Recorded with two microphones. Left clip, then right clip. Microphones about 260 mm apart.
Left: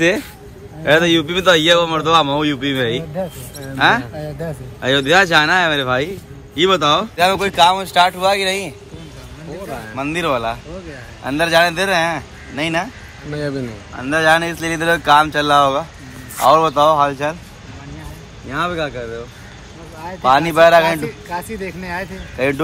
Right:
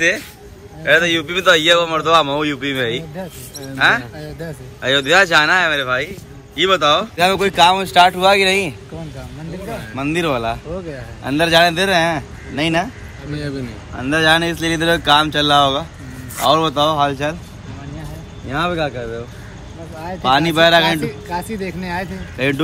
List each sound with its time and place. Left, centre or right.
0.8 s a man's voice: centre
7.2 s speech: centre
9.9 s speech: centre
13.3 s speech: centre
13.9 s speech: centre
18.5 s speech: centre